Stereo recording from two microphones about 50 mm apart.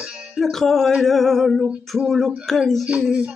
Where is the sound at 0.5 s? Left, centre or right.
Centre.